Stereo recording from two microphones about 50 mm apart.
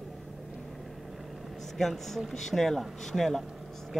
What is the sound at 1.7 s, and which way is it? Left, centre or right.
Speech, centre.